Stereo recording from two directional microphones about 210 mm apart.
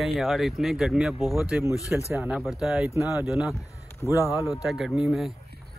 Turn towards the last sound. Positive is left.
turn(degrees=0)  # may be behind; listen again after turning